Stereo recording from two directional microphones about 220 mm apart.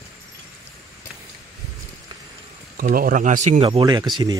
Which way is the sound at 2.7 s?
40° right (ahead or behind).